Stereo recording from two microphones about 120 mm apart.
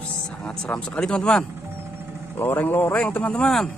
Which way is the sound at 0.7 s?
10° left (ahead or behind).